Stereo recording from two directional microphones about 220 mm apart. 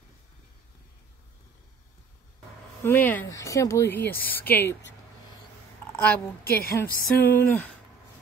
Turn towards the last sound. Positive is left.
turn(degrees=10)  # may be behind; listen again after turning